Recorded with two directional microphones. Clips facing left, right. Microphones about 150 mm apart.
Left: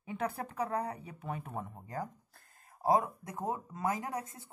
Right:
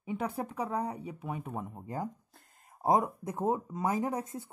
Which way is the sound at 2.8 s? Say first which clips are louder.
Right 2 dB; 20° right (ahead or behind).